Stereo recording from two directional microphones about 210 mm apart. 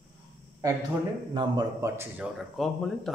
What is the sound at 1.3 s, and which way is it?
Speech, 15° right (ahead or behind).